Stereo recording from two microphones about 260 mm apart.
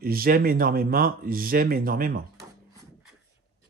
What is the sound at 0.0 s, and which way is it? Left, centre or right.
Speech, right.